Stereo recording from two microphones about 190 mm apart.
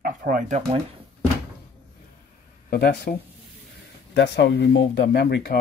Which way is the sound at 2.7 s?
55° left (ahead or behind).